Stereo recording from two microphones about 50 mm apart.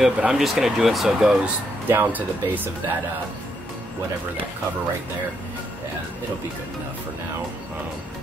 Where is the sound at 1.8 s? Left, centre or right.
Right.